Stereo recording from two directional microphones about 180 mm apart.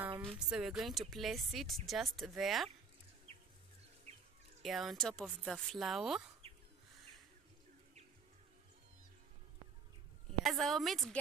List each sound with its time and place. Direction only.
0.2 s a sound: 5° left (ahead or behind)
0.6 s speech: centre (ahead or behind)
4.1 s bird: 35° right (ahead or behind)
4.6 s speech: centre (ahead or behind)
6.4 s a sound: 35° right (ahead or behind)
10.4 s speech: centre (ahead or behind)